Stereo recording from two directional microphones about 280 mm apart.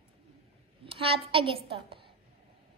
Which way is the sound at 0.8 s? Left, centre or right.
Centre.